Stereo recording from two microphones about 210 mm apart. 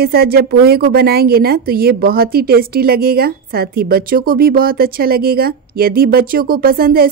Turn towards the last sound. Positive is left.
turn(degrees=-45)  # may be behind; listen again after turning